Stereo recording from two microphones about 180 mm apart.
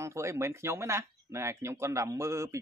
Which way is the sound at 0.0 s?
15° right (ahead or behind).